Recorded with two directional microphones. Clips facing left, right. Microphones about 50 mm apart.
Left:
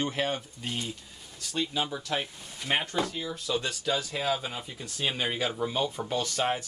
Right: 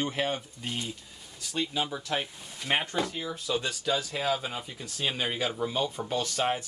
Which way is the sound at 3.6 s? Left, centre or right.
Centre.